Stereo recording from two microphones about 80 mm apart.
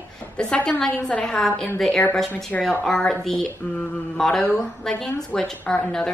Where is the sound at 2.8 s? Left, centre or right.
Centre.